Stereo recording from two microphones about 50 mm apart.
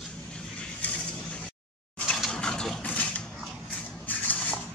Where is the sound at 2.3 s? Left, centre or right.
Centre.